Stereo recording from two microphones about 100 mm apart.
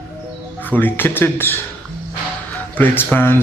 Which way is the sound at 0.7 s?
20° left (ahead or behind).